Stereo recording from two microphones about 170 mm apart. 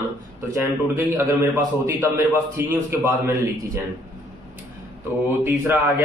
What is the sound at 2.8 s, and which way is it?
Speech, 15° right (ahead or behind).